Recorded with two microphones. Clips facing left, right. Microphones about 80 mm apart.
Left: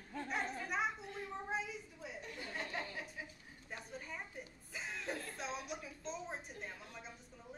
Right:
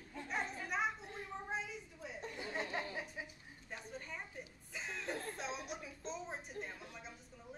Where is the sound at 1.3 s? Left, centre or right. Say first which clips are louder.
Left 1 dB; centre.